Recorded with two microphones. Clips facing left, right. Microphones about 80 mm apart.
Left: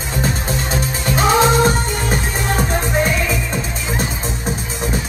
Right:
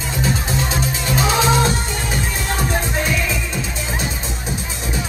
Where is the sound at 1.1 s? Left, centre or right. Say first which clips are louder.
Left 4 dB; left.